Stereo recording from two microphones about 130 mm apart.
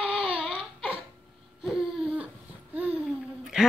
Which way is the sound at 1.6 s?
Centre (ahead or behind).